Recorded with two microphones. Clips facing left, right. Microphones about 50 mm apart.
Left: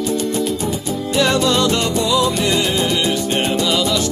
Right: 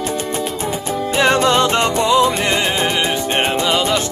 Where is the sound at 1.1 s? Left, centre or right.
Right.